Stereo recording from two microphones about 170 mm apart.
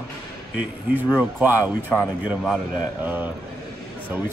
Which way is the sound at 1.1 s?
10° right (ahead or behind).